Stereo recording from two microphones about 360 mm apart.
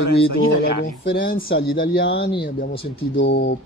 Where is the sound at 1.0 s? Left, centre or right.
Left.